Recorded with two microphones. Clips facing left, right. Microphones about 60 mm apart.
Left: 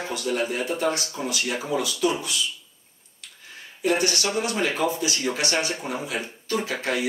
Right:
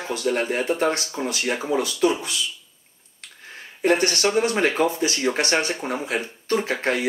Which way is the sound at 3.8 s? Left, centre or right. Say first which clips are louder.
Right 4 dB; right.